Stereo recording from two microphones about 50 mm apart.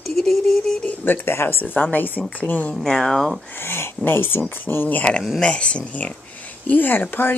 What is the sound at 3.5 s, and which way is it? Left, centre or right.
Speech, left.